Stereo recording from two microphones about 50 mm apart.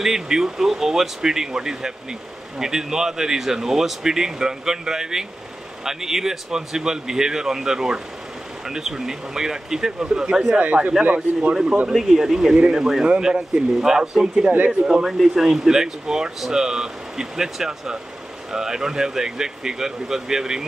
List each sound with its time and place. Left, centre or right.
0.0 s speech: centre
10.6 s speech: right
11.9 s speech: centre